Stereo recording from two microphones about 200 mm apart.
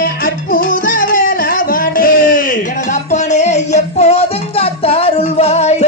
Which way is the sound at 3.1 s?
35° left (ahead or behind).